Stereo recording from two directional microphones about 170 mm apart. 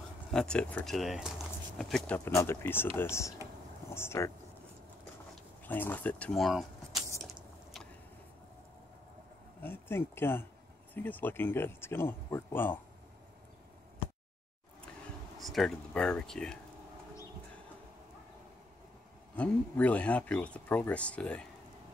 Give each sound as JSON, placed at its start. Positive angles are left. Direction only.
{"t": 0.3, "sound": "speech", "side_deg": 5}
{"t": 5.6, "sound": "speech", "side_deg": 10}
{"t": 9.6, "sound": "speech", "side_deg": 15}
{"t": 15.3, "sound": "speech", "side_deg": 0}
{"t": 19.3, "sound": "speech", "side_deg": 10}